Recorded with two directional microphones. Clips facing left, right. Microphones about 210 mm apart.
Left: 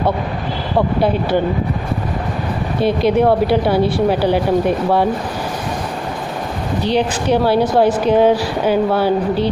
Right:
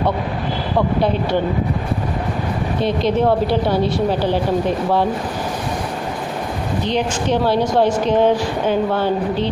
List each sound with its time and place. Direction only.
2.8 s a woman's voice: 10° left (ahead or behind)
6.8 s a woman's voice: 10° left (ahead or behind)